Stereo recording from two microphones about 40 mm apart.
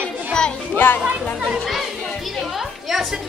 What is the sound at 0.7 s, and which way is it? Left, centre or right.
Speech, left.